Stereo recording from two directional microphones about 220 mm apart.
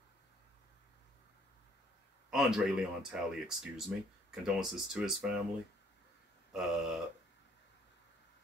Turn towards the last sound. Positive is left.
turn(degrees=-5)  # may be behind; listen again after turning